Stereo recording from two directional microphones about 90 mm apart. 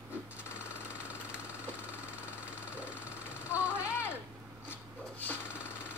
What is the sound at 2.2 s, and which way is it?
Vehicle, 15° right (ahead or behind).